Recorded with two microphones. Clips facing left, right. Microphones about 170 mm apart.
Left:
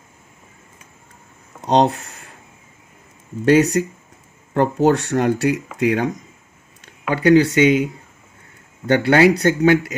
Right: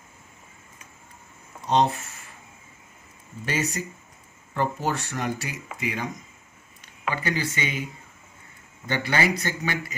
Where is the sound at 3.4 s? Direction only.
70° left (ahead or behind).